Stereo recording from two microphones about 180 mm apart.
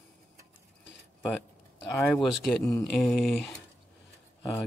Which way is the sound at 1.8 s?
15° left (ahead or behind).